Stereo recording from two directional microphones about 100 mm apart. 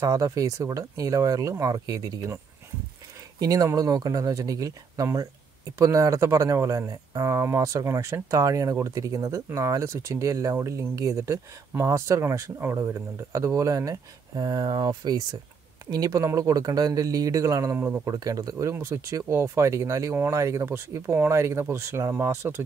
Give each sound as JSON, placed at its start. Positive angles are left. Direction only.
{"t": 0.0, "sound": "speech", "side_deg": -35}
{"t": 3.3, "sound": "speech", "side_deg": -35}
{"t": 18.0, "sound": "speech", "side_deg": -35}